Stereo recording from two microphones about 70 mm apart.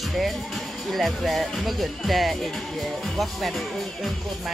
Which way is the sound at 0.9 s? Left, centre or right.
Centre.